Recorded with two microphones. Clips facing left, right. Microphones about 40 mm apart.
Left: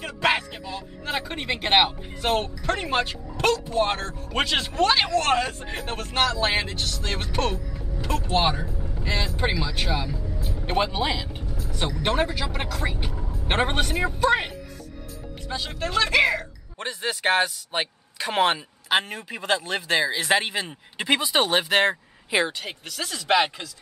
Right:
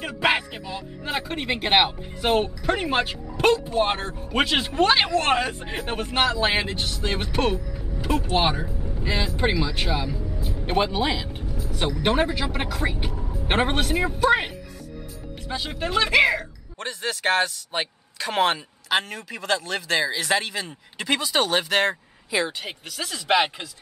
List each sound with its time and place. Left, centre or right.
0.0 s speech: centre
16.8 s a man's voice: centre
19.0 s speech: left
22.6 s speech: centre